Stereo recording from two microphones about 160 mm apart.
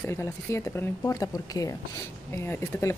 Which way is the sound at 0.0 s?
15° left (ahead or behind).